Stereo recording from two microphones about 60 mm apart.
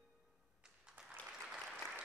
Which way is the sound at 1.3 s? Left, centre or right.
Centre.